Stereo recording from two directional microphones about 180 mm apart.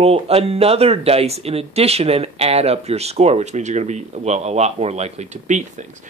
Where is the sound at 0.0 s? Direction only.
35° right (ahead or behind).